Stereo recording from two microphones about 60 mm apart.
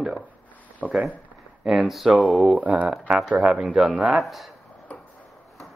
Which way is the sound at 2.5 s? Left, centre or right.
Right.